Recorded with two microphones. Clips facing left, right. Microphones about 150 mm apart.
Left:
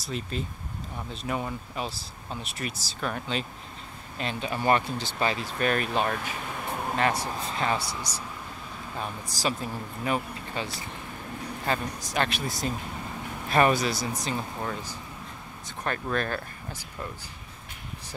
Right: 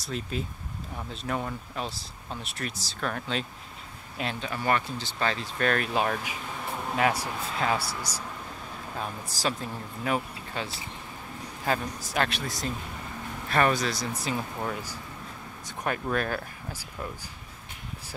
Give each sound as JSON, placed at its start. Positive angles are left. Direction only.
{"t": 0.0, "sound": "speech", "side_deg": 0}
{"t": 4.4, "sound": "speech", "side_deg": 20}
{"t": 9.0, "sound": "speech", "side_deg": 0}
{"t": 13.5, "sound": "speech", "side_deg": 15}
{"t": 14.2, "sound": "speech", "side_deg": -5}